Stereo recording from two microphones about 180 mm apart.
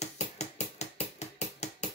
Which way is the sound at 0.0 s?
40° left (ahead or behind).